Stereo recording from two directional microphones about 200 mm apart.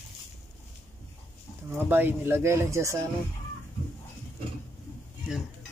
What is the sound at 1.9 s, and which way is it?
Speech, 10° right (ahead or behind).